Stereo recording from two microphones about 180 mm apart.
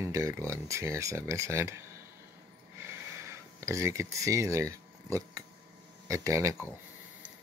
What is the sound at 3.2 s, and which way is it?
Speech, 15° right (ahead or behind).